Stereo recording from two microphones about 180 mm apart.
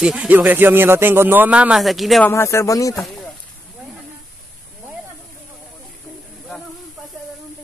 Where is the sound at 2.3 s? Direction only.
15° left (ahead or behind).